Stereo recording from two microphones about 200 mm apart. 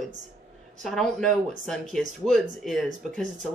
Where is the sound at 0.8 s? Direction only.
Centre (ahead or behind).